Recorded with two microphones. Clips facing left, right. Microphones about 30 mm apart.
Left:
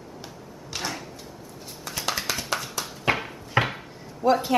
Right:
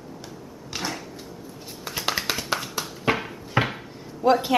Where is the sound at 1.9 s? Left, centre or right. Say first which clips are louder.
Right 2 dB; centre.